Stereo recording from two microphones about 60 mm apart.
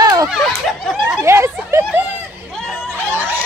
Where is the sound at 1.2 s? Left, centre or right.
Right.